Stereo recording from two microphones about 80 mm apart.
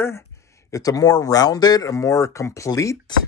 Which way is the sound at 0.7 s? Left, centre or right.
Left.